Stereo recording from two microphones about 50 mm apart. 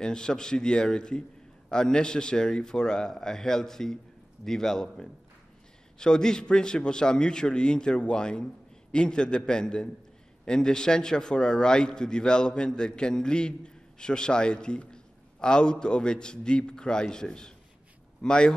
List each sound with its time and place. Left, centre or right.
0.0 s a man's voice: centre